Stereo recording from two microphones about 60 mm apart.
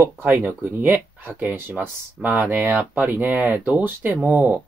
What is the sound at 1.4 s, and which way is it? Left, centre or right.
Speech, right.